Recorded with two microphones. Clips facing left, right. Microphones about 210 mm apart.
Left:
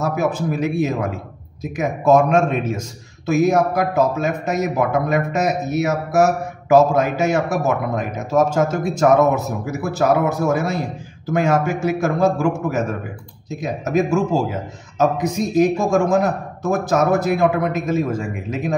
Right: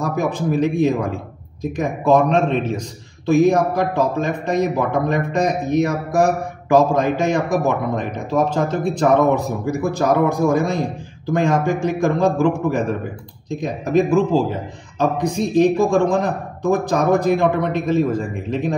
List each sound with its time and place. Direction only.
0.0 s a man's voice: 5° left (ahead or behind)
8.3 s speech: 45° left (ahead or behind)
8.7 s a man's voice: 5° left (ahead or behind)